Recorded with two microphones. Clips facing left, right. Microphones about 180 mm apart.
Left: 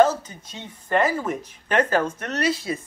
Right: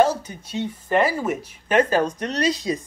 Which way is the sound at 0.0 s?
10° right (ahead or behind).